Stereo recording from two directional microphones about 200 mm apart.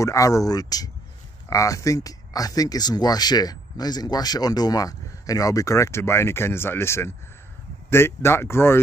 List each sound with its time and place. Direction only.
0.0 s speech: 15° left (ahead or behind)